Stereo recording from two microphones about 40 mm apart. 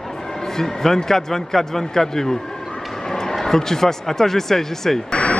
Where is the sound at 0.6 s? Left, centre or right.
Centre.